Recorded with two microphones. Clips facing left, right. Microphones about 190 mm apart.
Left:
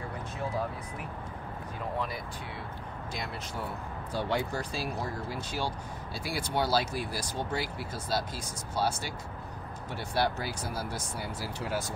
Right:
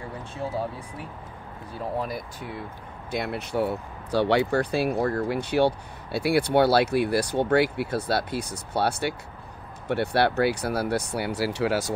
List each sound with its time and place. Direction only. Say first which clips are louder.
2.0 s speech: right 5 dB; 40° right (ahead or behind)
3.1 s speech: right 11 dB; 60° right (ahead or behind); by 11.9 s 80° right